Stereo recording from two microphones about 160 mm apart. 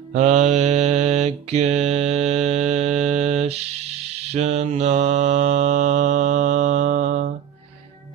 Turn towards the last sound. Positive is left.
turn(degrees=-50)  # may be behind; listen again after turning